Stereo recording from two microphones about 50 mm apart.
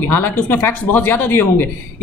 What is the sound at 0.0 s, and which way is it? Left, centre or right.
Speech, left.